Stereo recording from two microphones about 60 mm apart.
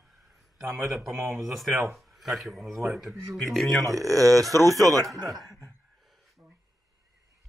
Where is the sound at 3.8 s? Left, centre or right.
Right.